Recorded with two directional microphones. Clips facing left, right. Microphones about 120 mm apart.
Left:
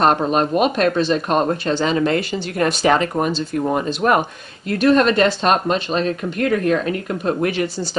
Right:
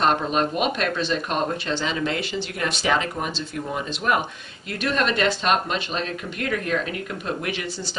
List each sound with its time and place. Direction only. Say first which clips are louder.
0.0 s speech: left 5 dB; 45° left (ahead or behind)